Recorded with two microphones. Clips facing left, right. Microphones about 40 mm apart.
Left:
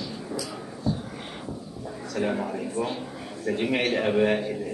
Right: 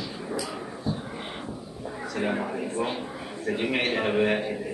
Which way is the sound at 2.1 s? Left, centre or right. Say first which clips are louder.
Left 1 dB; centre.